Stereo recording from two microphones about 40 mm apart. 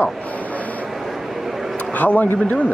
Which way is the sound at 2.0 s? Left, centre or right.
Left.